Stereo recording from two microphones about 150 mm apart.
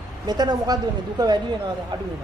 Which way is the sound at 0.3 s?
30° right (ahead or behind).